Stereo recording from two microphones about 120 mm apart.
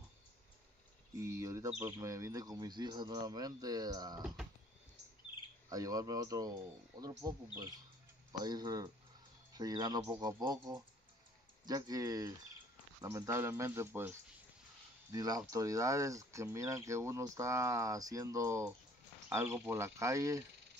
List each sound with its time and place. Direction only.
1.1 s speech: 25° right (ahead or behind)
5.7 s speech: 30° right (ahead or behind)
15.0 s speech: 30° right (ahead or behind)